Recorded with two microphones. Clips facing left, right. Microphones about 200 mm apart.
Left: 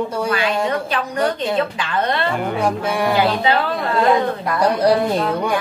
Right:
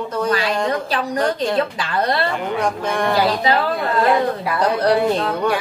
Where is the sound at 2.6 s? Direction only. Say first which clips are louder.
Left 2 dB; 10° left (ahead or behind).